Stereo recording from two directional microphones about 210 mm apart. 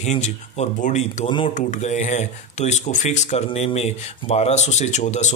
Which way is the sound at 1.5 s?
35° left (ahead or behind).